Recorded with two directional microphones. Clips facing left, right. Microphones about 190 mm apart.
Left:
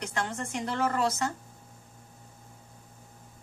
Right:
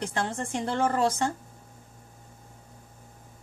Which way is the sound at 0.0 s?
30° right (ahead or behind).